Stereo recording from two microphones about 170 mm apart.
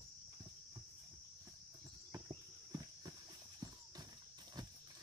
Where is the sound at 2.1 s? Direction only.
20° right (ahead or behind).